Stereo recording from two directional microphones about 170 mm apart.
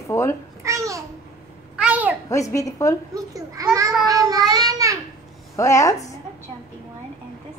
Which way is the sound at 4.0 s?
20° right (ahead or behind).